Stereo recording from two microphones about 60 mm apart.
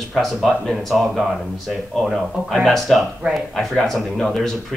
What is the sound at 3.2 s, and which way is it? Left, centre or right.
Speech, right.